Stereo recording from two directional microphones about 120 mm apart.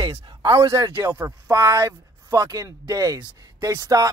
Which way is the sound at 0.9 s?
15° right (ahead or behind).